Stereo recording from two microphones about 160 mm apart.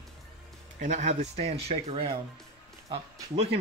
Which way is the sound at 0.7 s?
50° right (ahead or behind).